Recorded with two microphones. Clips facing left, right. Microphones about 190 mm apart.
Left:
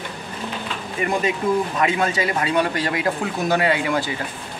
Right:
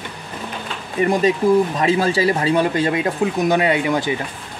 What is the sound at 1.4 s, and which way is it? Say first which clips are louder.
Speech: right 5 dB; 30° right (ahead or behind).